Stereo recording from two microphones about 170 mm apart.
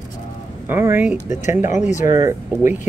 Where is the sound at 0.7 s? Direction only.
10° right (ahead or behind).